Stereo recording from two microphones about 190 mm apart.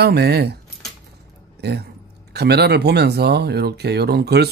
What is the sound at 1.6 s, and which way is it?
Speech, 60° right (ahead or behind).